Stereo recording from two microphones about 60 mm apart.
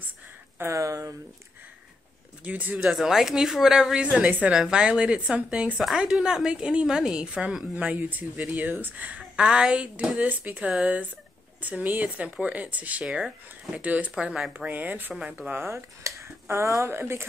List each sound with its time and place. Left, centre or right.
0.7 s speech: right
2.4 s speech: right
2.8 s a woman's voice: centre
11.6 s speech: right
13.0 s a woman's voice: centre; by 15.1 s right
15.5 s speech: right
16.9 s speech: right